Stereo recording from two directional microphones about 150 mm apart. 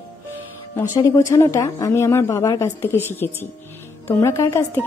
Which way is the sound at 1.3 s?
20° left (ahead or behind).